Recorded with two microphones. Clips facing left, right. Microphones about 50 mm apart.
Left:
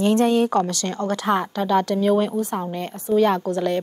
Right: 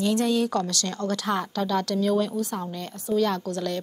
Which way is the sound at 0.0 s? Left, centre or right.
Left.